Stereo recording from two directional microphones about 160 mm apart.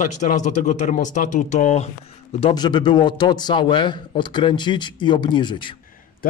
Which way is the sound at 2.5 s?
25° left (ahead or behind).